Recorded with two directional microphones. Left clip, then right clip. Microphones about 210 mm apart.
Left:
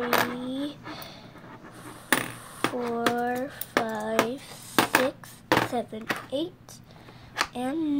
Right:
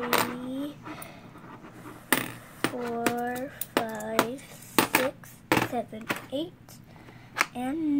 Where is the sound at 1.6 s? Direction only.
Centre (ahead or behind).